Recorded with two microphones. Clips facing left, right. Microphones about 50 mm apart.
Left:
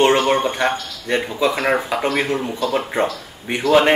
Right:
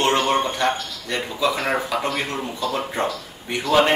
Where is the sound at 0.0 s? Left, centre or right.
Left.